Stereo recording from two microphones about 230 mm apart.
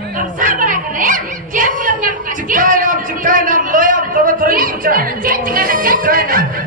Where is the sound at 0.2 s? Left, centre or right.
Right.